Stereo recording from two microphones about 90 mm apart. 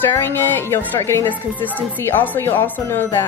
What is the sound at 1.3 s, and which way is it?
Speech, 20° left (ahead or behind).